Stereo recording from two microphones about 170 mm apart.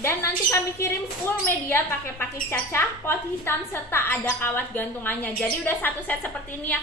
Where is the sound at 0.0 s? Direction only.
15° left (ahead or behind).